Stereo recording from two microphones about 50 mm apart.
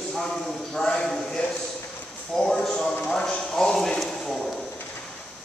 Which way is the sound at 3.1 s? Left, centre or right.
Centre.